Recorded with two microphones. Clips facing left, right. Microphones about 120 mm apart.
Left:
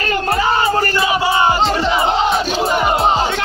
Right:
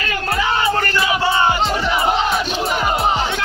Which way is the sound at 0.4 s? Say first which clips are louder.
Left 1 dB; 35° left (ahead or behind).